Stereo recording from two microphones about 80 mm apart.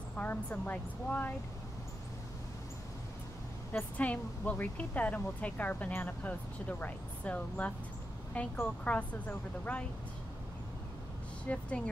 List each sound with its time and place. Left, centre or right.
0.2 s speech: centre
3.7 s a woman's voice: centre
11.4 s a woman's voice: centre